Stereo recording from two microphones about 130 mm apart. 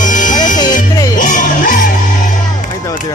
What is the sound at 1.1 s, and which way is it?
Music, 90° left.